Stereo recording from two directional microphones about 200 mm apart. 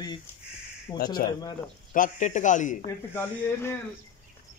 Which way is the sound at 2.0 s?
40° left (ahead or behind).